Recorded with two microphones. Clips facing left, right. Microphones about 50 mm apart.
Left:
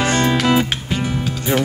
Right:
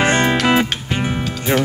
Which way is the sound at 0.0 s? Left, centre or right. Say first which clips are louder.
Right 2 dB; right.